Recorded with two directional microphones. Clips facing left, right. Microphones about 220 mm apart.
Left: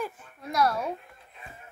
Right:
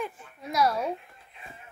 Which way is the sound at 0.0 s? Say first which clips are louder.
Even; centre (ahead or behind).